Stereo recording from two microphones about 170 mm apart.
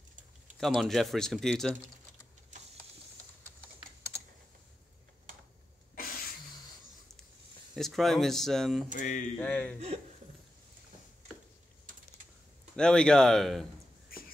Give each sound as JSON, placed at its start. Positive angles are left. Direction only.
{"t": 0.6, "sound": "speech", "side_deg": 0}
{"t": 5.9, "sound": "a sound", "side_deg": 60}
{"t": 7.7, "sound": "speech", "side_deg": 0}
{"t": 8.9, "sound": "mantra", "side_deg": 50}
{"t": 9.4, "sound": "speech", "side_deg": 10}
{"t": 12.7, "sound": "speech", "side_deg": 5}